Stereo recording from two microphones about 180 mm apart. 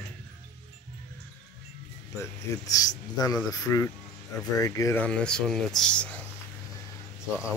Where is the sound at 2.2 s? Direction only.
20° left (ahead or behind).